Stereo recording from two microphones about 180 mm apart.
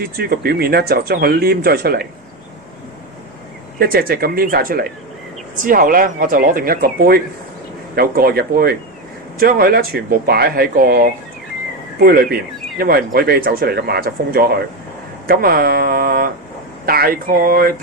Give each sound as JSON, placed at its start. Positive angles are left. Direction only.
{"t": 0.0, "sound": "speech", "side_deg": -60}
{"t": 3.8, "sound": "speech", "side_deg": -55}